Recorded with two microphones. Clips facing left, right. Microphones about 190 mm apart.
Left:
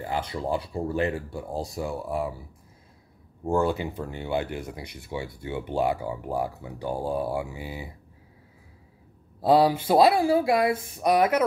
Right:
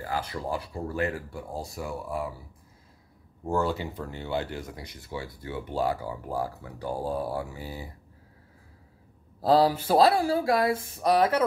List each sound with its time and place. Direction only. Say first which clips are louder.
0.0 s speech: left 2 dB; 25° left (ahead or behind)
3.4 s speech: left 3 dB; 15° left (ahead or behind)
9.5 s speech: left 2 dB; 15° left (ahead or behind)